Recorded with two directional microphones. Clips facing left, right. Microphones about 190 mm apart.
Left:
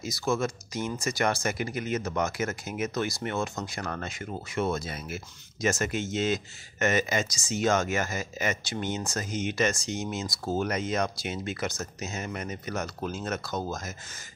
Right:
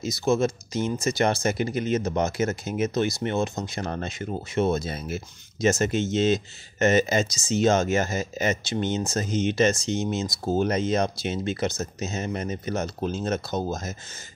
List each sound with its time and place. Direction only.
0.0 s speech: 20° right (ahead or behind)